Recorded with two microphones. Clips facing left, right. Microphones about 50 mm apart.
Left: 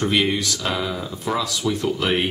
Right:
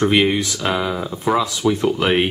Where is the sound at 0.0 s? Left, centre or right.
Right.